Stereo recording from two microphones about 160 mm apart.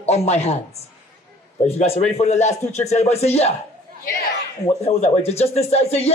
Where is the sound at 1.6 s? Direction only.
40° left (ahead or behind).